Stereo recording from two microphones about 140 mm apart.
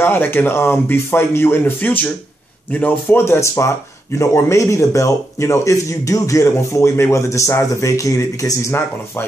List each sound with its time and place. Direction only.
0.0 s a man's voice: 15° left (ahead or behind)